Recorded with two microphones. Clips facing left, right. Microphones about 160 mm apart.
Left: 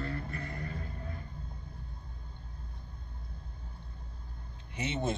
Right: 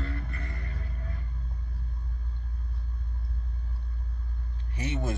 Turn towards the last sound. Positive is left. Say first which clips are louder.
# right 1 dB
turn(degrees=25)  # may be behind; listen again after turning